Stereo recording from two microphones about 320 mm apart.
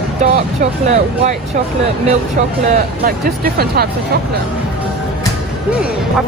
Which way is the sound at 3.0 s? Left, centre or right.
Right.